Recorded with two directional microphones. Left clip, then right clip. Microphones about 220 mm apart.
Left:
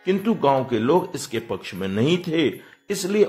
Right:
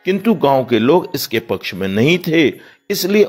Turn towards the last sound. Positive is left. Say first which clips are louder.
# right 6 dB
turn(degrees=-25)  # may be behind; listen again after turning